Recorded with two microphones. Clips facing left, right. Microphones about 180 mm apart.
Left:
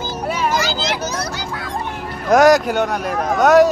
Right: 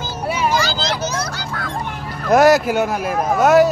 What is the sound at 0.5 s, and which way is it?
Vehicle, 20° left (ahead or behind).